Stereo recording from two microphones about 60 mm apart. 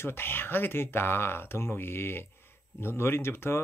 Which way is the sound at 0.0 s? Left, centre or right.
Left.